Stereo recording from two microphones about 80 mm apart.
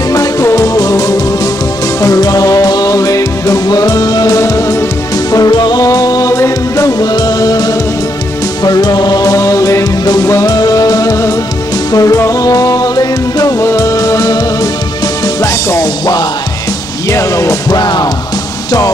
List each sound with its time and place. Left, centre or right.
0.1 s music: left
5.3 s music: left
6.3 s music: left
7.0 s music: left
10.5 s music: left
17.1 s music: left
17.6 s music: left